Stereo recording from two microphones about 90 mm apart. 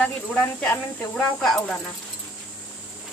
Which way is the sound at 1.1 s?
5° left (ahead or behind).